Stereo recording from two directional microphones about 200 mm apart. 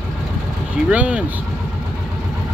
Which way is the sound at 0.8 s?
5° right (ahead or behind).